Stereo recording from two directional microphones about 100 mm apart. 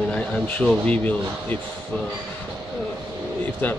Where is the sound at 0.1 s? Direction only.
10° left (ahead or behind).